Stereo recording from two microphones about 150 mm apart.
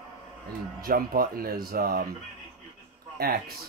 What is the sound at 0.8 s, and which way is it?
Speech, 80° right.